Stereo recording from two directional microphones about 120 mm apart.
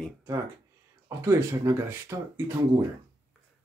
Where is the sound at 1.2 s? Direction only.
25° right (ahead or behind).